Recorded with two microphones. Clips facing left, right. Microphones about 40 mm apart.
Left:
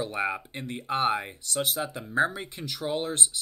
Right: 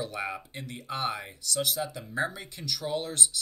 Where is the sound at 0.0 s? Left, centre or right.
Left.